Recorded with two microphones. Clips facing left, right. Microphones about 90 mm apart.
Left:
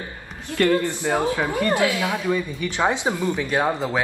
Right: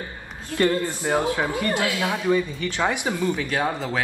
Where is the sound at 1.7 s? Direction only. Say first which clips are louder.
Left 3 dB; 25° left (ahead or behind).